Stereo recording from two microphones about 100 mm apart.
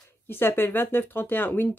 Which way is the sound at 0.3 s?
20° left (ahead or behind).